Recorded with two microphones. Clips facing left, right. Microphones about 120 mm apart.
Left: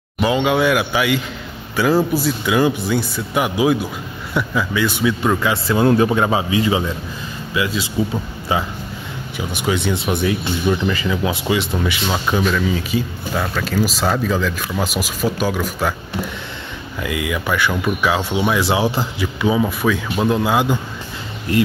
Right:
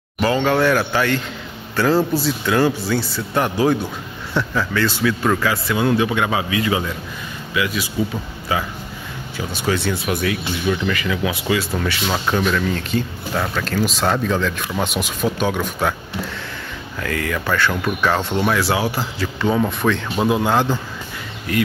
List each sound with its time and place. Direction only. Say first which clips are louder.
0.2 s speech: left 1 dB; 15° left (ahead or behind)
5.7 s speech: left 5 dB; 40° left (ahead or behind); by 11.7 s 20° left (ahead or behind)
11.8 s speech: left 1 dB; 10° left (ahead or behind)
17.0 s speech: left 1 dB; 10° left (ahead or behind)
18.6 s speech: left 2 dB; 20° left (ahead or behind)
19.2 s speech: left 1 dB; 5° left (ahead or behind)
20.5 s speech: left 1 dB; 15° left (ahead or behind)